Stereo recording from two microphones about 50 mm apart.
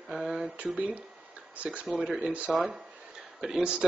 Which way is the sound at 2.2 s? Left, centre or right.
Right.